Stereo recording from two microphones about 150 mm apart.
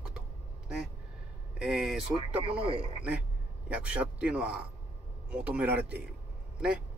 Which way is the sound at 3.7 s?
10° right (ahead or behind).